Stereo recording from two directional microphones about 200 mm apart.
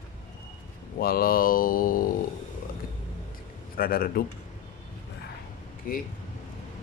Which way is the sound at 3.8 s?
50° left (ahead or behind).